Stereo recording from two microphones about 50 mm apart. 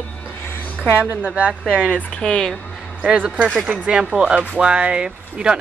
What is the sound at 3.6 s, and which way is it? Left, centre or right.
Speech, right.